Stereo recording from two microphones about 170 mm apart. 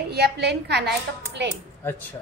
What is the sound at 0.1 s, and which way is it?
A child's voice, 70° right (ahead or behind).